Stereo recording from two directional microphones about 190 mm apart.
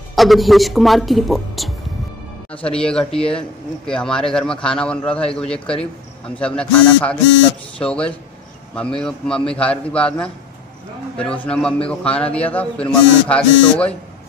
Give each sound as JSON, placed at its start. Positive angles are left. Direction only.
{"t": 0.1, "sound": "speech", "side_deg": 0}